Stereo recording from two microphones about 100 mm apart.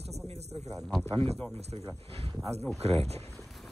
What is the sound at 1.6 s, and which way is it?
Speech, 90° right.